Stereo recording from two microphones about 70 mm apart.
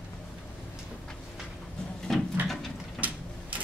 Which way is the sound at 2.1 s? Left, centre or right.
Centre.